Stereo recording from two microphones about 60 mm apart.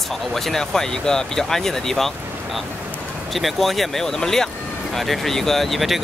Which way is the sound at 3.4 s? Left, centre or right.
Centre.